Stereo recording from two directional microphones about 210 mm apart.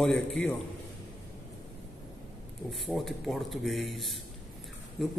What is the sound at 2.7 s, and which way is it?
A man's voice, centre (ahead or behind).